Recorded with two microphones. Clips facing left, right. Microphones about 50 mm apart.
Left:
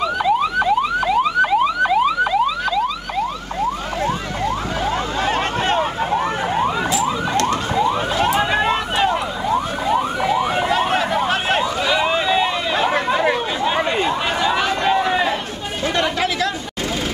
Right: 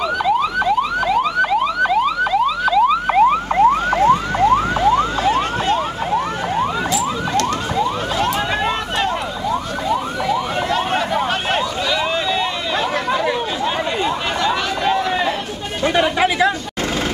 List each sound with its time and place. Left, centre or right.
0.2 s car alarm: centre
3.2 s car alarm: right
4.9 s emergency vehicle: left
6.1 s car alarm: centre
9.5 s car alarm: left
10.7 s a sound: centre
11.9 s chatter: centre
16.0 s chatter: centre